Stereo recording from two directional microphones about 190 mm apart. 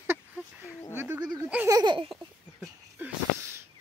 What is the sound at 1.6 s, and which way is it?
Baby laughter, 20° right (ahead or behind).